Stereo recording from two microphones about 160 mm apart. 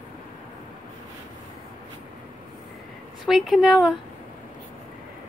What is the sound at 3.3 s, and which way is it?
Speech, centre (ahead or behind).